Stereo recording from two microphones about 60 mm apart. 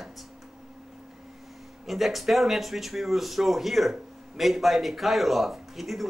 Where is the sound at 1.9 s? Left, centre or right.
Centre.